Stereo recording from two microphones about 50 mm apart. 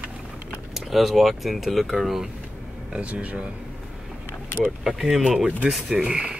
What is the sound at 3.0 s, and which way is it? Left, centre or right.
Speech, right.